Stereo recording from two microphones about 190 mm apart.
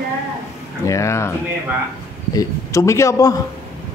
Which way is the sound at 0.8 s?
15° left (ahead or behind).